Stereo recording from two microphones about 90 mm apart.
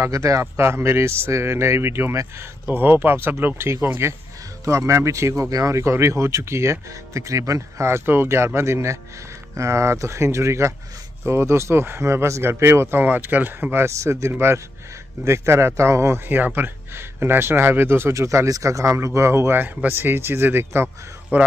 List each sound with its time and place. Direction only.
0.0 s a man's voice: 35° right (ahead or behind)